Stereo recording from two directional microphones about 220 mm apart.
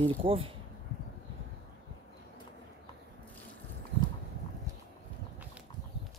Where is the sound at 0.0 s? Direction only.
25° right (ahead or behind).